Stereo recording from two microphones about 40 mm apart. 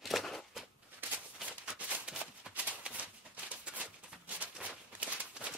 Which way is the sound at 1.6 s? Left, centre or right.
Right.